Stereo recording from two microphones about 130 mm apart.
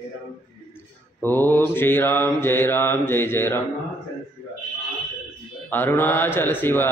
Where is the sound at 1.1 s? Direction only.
15° left (ahead or behind).